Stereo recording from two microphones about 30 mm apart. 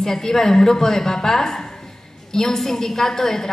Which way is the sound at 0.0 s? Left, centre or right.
Centre.